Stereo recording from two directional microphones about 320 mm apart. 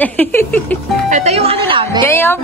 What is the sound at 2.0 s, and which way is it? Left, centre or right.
Speech, centre.